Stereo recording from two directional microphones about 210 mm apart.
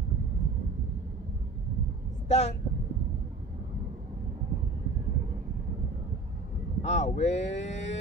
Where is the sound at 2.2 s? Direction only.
30° left (ahead or behind).